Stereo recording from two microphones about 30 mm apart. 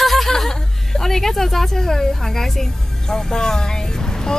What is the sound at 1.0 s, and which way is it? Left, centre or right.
Speech, centre.